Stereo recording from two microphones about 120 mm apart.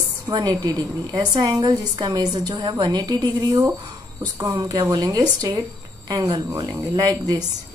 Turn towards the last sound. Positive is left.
turn(degrees=-35)  # may be behind; listen again after turning